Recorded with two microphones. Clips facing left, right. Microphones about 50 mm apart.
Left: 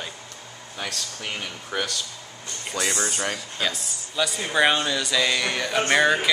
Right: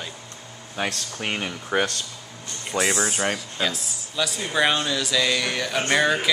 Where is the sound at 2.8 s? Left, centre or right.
Centre.